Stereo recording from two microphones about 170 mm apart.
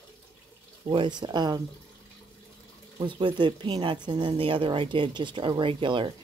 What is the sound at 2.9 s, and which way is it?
Speech, 30° right (ahead or behind).